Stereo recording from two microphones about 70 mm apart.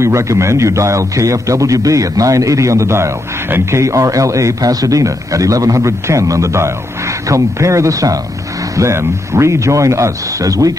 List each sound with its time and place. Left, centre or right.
0.0 s a man's voice: right
3.8 s a man's voice: right
8.7 s a man's voice: right